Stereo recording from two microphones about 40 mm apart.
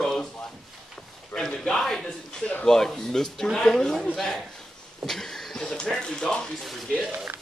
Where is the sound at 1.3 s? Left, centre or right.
Centre.